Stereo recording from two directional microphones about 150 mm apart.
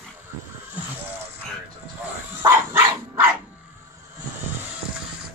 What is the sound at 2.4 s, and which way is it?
Dog, 15° right (ahead or behind).